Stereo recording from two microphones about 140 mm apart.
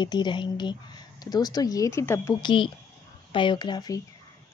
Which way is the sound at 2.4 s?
35° left (ahead or behind).